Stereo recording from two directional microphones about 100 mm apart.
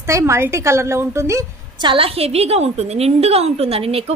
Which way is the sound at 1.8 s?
50° right (ahead or behind).